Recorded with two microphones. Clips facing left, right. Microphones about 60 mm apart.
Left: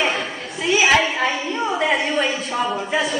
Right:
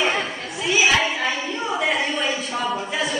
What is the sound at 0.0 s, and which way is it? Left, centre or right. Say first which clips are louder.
Chatter: even; centre.